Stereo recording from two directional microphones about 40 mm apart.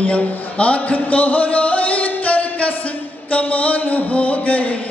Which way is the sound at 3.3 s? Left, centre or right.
Left.